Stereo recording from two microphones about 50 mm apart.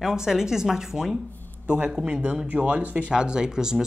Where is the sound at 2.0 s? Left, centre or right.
Right.